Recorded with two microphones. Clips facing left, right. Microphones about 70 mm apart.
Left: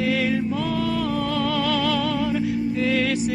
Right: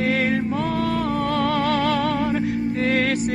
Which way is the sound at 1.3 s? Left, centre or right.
Right.